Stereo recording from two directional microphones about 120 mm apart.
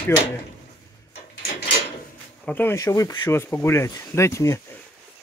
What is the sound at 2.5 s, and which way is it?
Speech, 15° left (ahead or behind).